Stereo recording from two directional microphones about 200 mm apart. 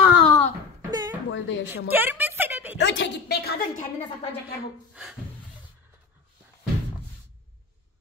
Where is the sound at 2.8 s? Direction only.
65° left (ahead or behind).